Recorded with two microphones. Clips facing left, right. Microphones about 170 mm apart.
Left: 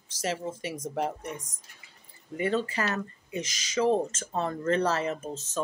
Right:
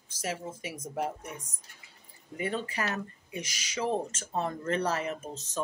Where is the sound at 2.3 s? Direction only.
90° left.